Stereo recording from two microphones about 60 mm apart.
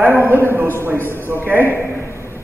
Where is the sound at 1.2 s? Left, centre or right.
Right.